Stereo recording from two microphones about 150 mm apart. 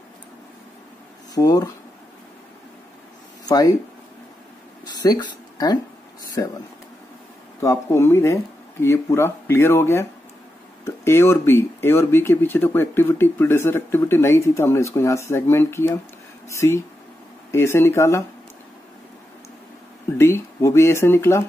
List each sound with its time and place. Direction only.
1.3 s speech: 25° left (ahead or behind)
3.4 s speech: 25° left (ahead or behind)
4.8 s speech: 25° left (ahead or behind)
7.6 s speech: 15° left (ahead or behind)
11.1 s speech: 15° left (ahead or behind)
20.2 s speech: 15° left (ahead or behind)